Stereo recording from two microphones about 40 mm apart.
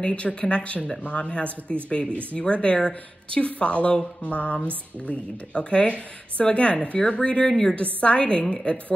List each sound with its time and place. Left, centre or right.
0.0 s speech: left
7.4 s a woman's voice: centre
7.7 s speech: left